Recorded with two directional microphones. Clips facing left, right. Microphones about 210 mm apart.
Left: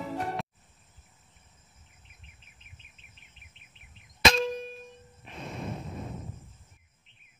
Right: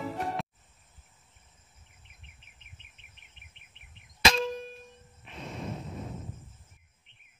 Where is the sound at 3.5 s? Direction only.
60° right (ahead or behind).